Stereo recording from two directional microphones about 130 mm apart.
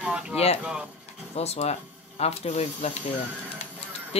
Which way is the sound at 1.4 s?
55° left (ahead or behind).